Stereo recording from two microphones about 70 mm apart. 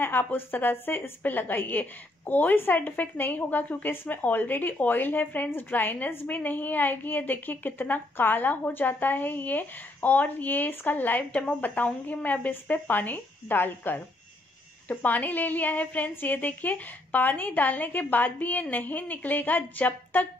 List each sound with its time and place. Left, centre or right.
0.0 s a woman's voice: left